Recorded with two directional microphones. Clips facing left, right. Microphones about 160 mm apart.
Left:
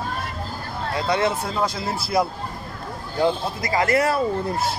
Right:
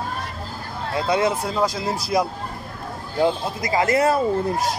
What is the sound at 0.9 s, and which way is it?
Speech, 20° right (ahead or behind).